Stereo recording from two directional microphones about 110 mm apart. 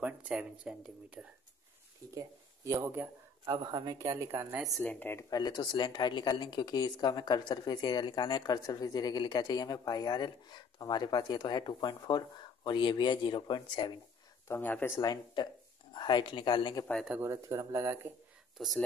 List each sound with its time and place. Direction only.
0.0 s speech: 10° right (ahead or behind)
2.1 s speech: 25° right (ahead or behind)
3.4 s a woman's voice: 40° right (ahead or behind); by 4.6 s 25° right (ahead or behind)
4.6 s speech: centre (ahead or behind)
4.8 s speech: 15° left (ahead or behind)
5.3 s speech: 40° left (ahead or behind)
14.5 s speech: 15° left (ahead or behind)
15.0 s speech: 35° left (ahead or behind)
17.2 s speech: 25° right (ahead or behind)
18.6 s speech: centre (ahead or behind)